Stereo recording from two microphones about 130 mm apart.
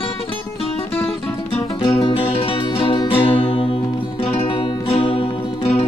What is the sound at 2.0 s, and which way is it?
Music, 40° left (ahead or behind).